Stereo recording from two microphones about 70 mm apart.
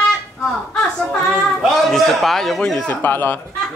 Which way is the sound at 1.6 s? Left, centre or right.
Centre.